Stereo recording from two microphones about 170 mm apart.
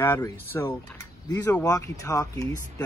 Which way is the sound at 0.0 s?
10° left (ahead or behind).